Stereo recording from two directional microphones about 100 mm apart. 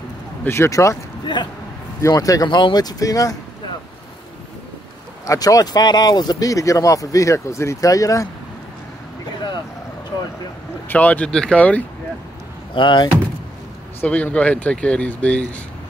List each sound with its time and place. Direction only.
0.4 s speech: 25° left (ahead or behind)
1.2 s speech: 50° left (ahead or behind)
2.0 s speech: 35° left (ahead or behind)
5.2 s speech: 35° left (ahead or behind)
10.9 s speech: 15° left (ahead or behind)
12.7 s speech: 50° left (ahead or behind)
14.0 s speech: 15° left (ahead or behind)